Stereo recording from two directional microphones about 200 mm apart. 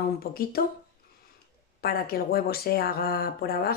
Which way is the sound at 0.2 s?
50° left (ahead or behind).